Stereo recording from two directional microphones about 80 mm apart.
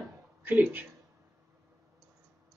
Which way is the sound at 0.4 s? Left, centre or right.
Right.